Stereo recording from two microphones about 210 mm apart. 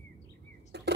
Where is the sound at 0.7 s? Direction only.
50° right (ahead or behind).